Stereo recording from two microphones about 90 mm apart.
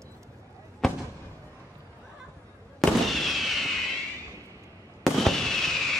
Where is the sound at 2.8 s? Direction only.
Centre (ahead or behind).